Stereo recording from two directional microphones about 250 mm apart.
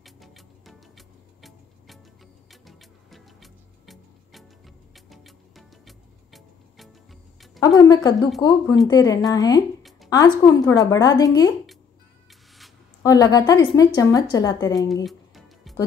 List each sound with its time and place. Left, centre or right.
0.0 s music: centre
7.6 s speech: centre
12.3 s music: centre
13.0 s speech: centre
15.0 s music: centre